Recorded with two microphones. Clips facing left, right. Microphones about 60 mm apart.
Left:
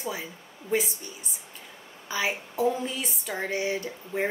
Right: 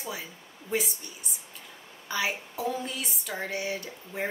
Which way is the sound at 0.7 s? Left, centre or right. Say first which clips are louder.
Left 3 dB; centre.